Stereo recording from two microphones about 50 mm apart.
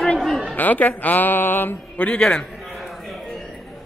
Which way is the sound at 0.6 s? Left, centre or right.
Left.